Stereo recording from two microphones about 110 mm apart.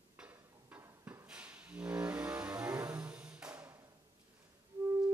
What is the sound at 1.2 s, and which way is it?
Music, 10° right (ahead or behind).